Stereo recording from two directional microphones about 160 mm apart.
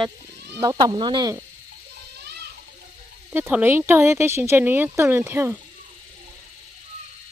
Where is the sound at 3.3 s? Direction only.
15° right (ahead or behind).